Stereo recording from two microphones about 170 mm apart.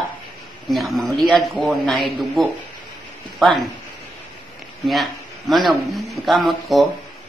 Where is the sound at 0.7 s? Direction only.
Centre (ahead or behind).